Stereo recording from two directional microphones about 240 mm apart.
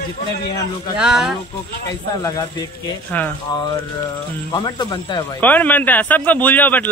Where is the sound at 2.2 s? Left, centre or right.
Centre.